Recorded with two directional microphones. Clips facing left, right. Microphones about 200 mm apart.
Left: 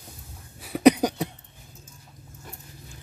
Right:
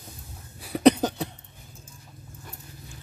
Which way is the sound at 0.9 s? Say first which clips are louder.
Left 2 dB; 15° left (ahead or behind).